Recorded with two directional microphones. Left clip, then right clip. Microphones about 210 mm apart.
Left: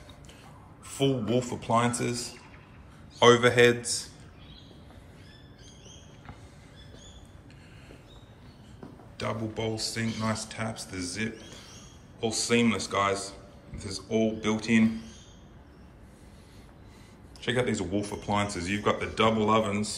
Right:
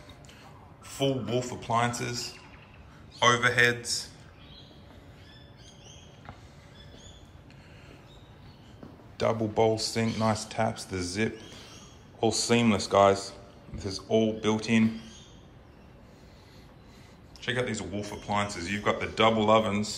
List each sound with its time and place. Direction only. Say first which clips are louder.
0.9 s speech: left 2 dB; centre (ahead or behind)
9.1 s a man's voice: right 6 dB; 15° right (ahead or behind)
17.4 s speech: left 2 dB; centre (ahead or behind)